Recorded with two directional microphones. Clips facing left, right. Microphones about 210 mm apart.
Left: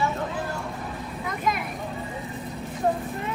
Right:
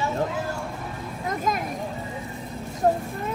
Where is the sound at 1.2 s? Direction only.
45° right (ahead or behind).